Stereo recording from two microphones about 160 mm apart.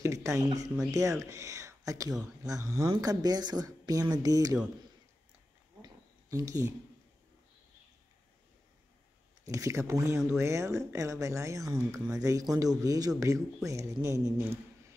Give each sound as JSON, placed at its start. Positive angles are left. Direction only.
{"t": 0.0, "sound": "speech", "side_deg": -20}
{"t": 6.3, "sound": "speech", "side_deg": -20}
{"t": 9.5, "sound": "speech", "side_deg": -20}